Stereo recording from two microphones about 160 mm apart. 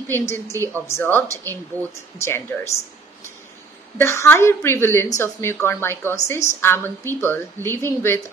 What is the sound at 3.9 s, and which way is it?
A woman's voice, 15° left (ahead or behind).